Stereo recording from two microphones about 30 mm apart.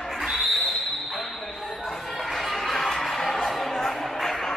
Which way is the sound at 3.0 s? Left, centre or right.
Centre.